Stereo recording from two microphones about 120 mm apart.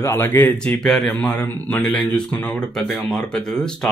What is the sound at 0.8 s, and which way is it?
A man's voice, 5° left (ahead or behind).